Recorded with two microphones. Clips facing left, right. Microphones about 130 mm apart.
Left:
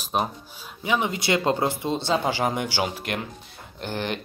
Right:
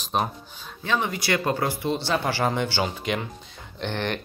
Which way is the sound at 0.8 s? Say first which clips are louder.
Left 1 dB; 15° left (ahead or behind).